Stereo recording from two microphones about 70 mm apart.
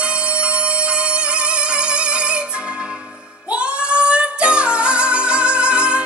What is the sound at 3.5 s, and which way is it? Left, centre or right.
Music, centre.